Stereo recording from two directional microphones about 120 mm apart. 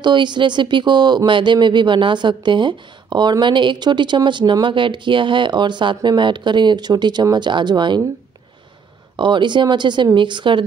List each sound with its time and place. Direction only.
0.0 s speech: 40° right (ahead or behind)
9.1 s a woman's voice: 40° right (ahead or behind)